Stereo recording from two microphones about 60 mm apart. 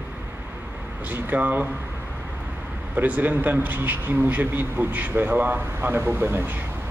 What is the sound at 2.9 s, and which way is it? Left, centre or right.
Speech, right.